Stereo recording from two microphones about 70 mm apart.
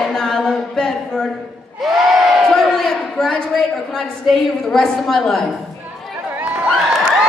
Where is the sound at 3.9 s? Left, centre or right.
Centre.